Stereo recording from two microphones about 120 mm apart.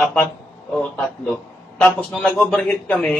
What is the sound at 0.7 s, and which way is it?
A man's voice, 10° left (ahead or behind).